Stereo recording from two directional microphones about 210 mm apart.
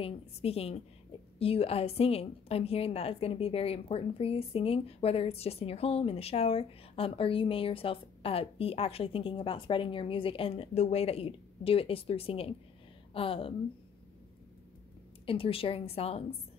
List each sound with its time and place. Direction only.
0.0 s a woman's voice: 30° left (ahead or behind)
15.2 s a woman's voice: 25° left (ahead or behind)